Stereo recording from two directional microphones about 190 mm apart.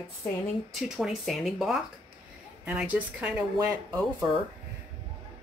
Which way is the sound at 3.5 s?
20° right (ahead or behind).